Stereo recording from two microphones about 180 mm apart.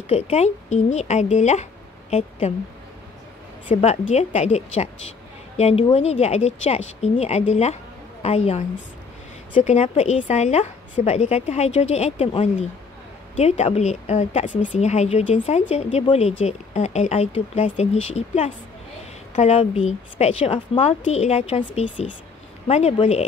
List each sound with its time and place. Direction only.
0.1 s speech: 35° left (ahead or behind)
3.6 s speech: 35° left (ahead or behind)
13.4 s speech: 35° left (ahead or behind)